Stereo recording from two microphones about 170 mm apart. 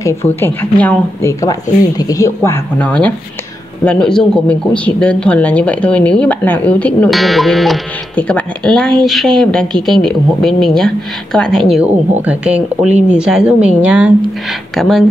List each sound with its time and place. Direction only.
0.0 s speech: 15° left (ahead or behind)
11.7 s speech: 5° right (ahead or behind)